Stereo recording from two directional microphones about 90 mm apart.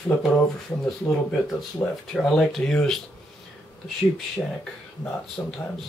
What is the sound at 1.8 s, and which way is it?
Speech, 25° left (ahead or behind).